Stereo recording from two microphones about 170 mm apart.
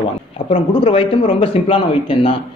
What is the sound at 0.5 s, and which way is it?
Speech, 35° left (ahead or behind).